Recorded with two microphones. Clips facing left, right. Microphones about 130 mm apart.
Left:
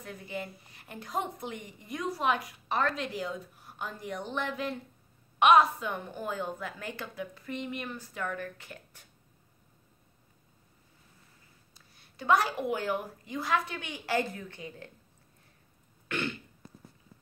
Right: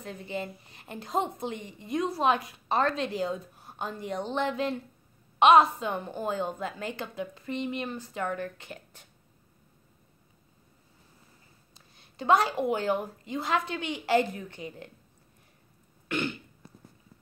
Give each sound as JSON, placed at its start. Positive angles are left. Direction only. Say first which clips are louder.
{"t": 0.0, "sound": "a woman's voice", "louder": "right 3 dB", "side_deg": -25}
{"t": 11.7, "sound": "a woman's voice", "louder": "right 5 dB", "side_deg": -25}
{"t": 16.1, "sound": "throat clearing", "louder": "right 3 dB", "side_deg": -15}